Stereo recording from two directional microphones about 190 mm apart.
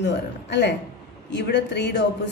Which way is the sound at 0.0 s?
65° left (ahead or behind).